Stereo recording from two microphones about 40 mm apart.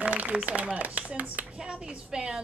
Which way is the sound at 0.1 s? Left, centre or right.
Right.